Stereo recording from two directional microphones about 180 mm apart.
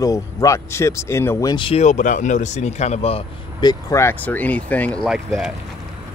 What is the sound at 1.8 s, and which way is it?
Speech, 45° left (ahead or behind).